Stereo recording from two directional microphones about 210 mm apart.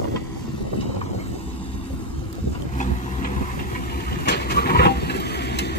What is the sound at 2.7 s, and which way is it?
Vehicle, 35° left (ahead or behind).